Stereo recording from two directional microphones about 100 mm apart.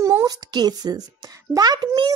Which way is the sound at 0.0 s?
35° right (ahead or behind).